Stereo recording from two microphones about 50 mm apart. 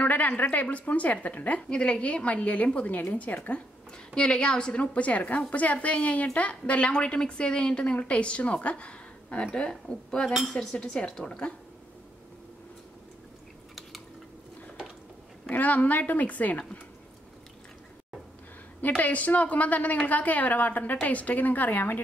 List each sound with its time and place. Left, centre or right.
0.0 s a woman's voice: left
4.1 s a woman's voice: centre
15.5 s a woman's voice: left
18.8 s a woman's voice: left